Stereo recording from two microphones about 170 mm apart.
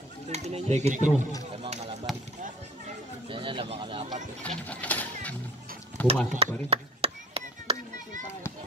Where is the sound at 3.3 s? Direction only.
30° right (ahead or behind).